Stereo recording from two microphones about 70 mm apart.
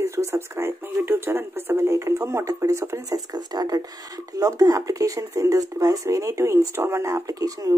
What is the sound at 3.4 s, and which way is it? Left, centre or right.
Speech, right.